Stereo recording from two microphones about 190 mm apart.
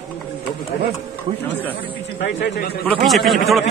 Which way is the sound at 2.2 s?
60° left (ahead or behind).